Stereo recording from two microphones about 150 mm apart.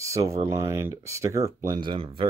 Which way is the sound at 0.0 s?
20° right (ahead or behind).